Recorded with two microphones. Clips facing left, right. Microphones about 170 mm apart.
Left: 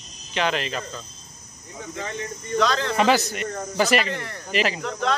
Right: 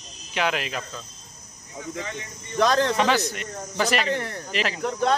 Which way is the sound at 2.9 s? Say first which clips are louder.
Left 2 dB; 5° left (ahead or behind).